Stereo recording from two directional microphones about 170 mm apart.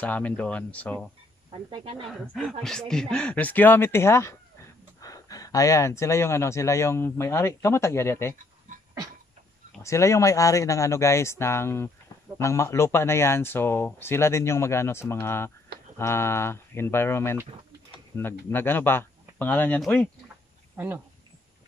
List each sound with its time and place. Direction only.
0.0 s speech: 10° left (ahead or behind)
1.7 s speech: 30° right (ahead or behind)
2.6 s speech: 5° left (ahead or behind)
9.8 s speech: 15° left (ahead or behind)
20.7 s speech: 10° right (ahead or behind)